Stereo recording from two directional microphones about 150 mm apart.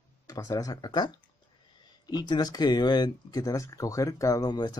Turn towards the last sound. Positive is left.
turn(degrees=25)  # may be behind; listen again after turning